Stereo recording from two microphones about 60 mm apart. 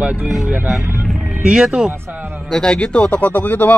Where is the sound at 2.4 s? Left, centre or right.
Centre.